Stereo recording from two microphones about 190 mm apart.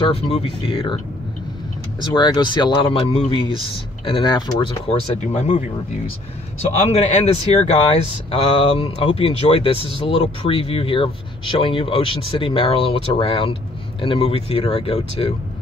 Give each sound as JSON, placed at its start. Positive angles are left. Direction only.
{"t": 0.1, "sound": "speech", "side_deg": 30}
{"t": 2.0, "sound": "speech", "side_deg": 25}
{"t": 6.9, "sound": "speech", "side_deg": 35}